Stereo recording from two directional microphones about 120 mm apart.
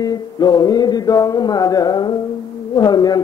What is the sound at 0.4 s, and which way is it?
Speech, 35° left (ahead or behind).